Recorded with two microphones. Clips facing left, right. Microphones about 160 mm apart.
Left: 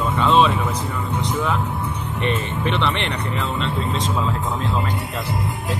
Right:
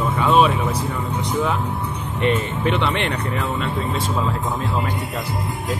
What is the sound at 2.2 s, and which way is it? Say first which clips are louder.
Speech: right 3 dB; 15° right (ahead or behind).